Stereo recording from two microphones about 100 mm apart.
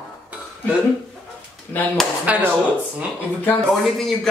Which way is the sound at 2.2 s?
15° right (ahead or behind).